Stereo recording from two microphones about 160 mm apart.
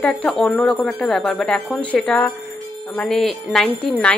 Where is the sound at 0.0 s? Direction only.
5° left (ahead or behind).